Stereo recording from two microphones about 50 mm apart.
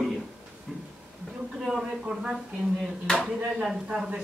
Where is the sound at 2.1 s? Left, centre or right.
Centre.